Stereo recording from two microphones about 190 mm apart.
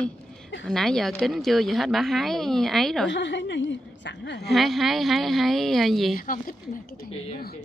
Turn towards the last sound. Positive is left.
turn(degrees=45)  # may be behind; listen again after turning